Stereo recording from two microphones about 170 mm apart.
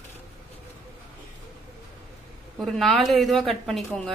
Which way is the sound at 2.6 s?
Centre (ahead or behind).